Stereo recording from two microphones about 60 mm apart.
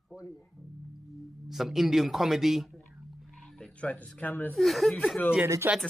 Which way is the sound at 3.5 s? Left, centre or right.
Centre.